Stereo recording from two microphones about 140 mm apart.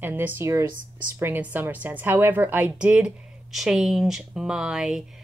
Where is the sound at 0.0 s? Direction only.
15° right (ahead or behind).